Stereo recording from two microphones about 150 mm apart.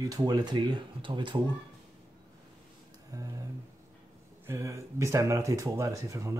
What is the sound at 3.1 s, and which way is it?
Speech, 20° right (ahead or behind).